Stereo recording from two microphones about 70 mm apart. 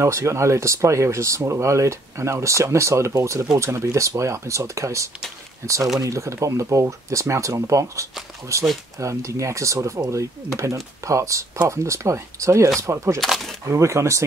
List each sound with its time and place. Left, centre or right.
0.0 s speech: right